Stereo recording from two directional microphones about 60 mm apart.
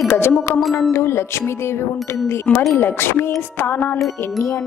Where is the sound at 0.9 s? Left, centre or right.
Left.